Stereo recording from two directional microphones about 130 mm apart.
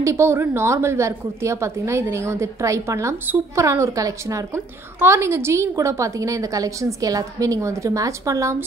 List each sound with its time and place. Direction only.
0.0 s a woman's voice: 20° right (ahead or behind)